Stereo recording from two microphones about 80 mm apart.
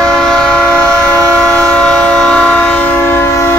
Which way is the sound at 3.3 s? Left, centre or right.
Left.